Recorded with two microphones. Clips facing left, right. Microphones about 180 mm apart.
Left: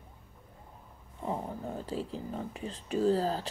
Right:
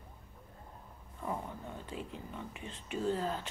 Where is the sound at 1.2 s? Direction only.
30° left (ahead or behind).